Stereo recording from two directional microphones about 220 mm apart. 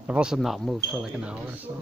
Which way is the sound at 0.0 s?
5° right (ahead or behind).